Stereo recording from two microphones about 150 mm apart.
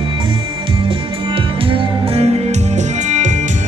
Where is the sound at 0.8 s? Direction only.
35° right (ahead or behind); by 3.4 s 50° right (ahead or behind).